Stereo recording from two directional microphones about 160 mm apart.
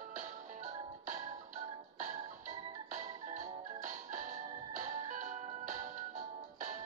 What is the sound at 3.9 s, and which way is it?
Music, 50° right (ahead or behind).